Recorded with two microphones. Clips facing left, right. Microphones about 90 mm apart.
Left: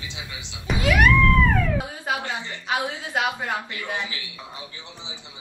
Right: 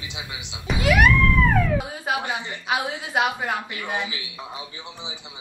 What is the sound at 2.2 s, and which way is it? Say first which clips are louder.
A man's voice: right 2 dB; 15° right (ahead or behind).